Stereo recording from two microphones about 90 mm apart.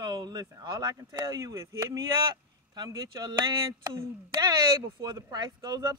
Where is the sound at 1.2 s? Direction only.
35° right (ahead or behind).